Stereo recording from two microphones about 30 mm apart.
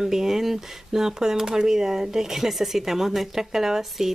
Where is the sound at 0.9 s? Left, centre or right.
Centre.